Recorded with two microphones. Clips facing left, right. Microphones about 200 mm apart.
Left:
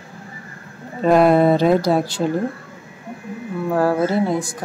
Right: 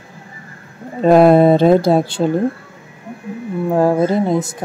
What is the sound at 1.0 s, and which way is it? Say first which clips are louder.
Speech: right 4 dB; 30° right (ahead or behind).